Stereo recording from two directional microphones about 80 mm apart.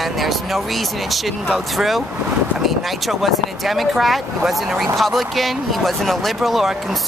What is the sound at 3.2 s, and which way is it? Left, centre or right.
Speech, centre.